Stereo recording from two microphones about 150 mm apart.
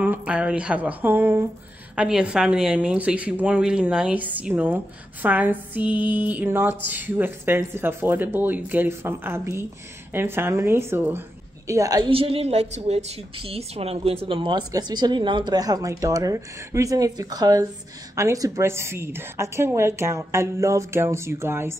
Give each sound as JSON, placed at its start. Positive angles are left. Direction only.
{"t": 0.0, "sound": "a woman's voice", "side_deg": -10}
{"t": 12.1, "sound": "a woman's voice", "side_deg": -40}